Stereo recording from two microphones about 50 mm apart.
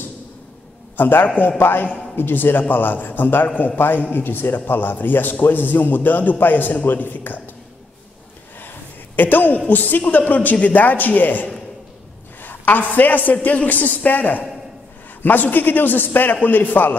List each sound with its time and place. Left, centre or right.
0.9 s a man's voice: left
8.5 s a sound: left
9.7 s a man's voice: left